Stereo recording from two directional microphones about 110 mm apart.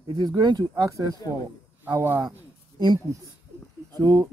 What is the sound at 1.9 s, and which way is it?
Speech, 20° right (ahead or behind).